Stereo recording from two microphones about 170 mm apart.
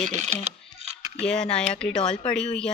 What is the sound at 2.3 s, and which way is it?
Speech, 5° left (ahead or behind).